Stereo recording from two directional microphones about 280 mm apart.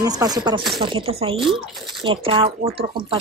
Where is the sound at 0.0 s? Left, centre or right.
Centre.